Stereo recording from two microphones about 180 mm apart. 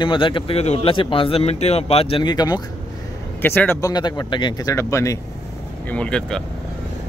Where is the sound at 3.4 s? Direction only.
10° left (ahead or behind).